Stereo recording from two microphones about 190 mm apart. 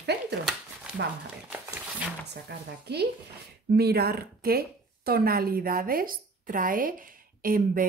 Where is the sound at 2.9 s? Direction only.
60° right (ahead or behind).